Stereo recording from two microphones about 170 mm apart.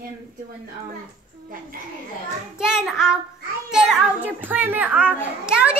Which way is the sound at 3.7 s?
Centre (ahead or behind).